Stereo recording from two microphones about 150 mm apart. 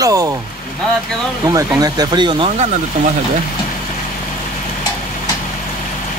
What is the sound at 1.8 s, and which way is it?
Speech, 25° right (ahead or behind).